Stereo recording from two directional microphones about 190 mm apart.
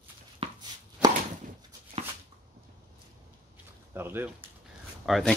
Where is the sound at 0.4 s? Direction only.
30° right (ahead or behind).